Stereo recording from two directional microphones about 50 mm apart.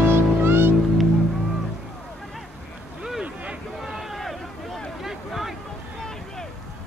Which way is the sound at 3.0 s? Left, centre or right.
Centre.